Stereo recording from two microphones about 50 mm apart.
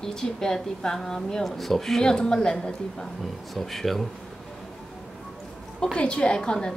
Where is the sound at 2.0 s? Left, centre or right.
Centre.